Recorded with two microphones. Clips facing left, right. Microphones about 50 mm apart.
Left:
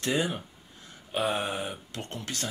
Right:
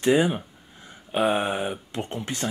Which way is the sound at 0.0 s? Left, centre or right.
Centre.